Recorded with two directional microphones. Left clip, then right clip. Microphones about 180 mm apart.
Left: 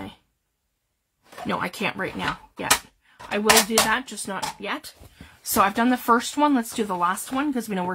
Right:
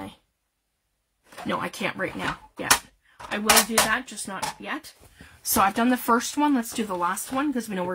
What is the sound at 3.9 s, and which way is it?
Speech, 40° left (ahead or behind).